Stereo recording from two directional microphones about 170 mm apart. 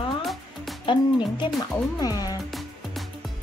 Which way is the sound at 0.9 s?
30° left (ahead or behind).